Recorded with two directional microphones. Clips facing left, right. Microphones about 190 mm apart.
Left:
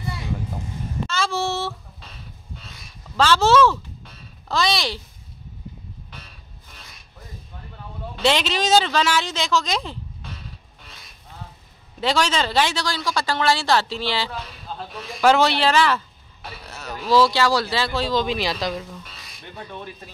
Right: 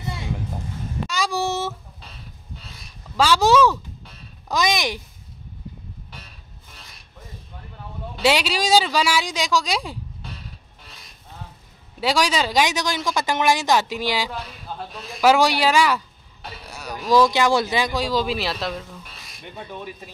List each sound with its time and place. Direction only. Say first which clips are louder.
1.0 s child singing: even; 15° right (ahead or behind)
3.2 s speech: even; 15° right (ahead or behind)
8.2 s speech: right 1 dB; 10° right (ahead or behind)
12.0 s speech: even; 10° right (ahead or behind)
19.5 s speech: right 1 dB; 10° right (ahead or behind)